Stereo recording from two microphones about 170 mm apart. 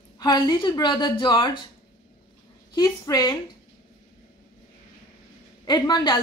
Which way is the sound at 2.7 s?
20° left (ahead or behind).